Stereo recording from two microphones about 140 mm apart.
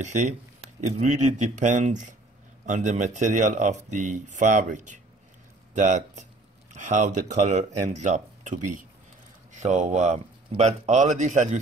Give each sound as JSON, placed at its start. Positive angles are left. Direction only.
{"t": 0.0, "sound": "speech", "side_deg": -60}